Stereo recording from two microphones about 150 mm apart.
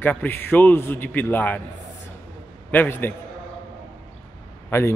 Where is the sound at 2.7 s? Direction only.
10° left (ahead or behind).